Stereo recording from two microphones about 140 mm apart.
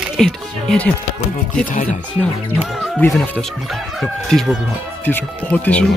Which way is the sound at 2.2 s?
5° left (ahead or behind).